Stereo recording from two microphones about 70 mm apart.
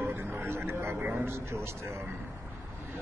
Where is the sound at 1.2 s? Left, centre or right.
Right.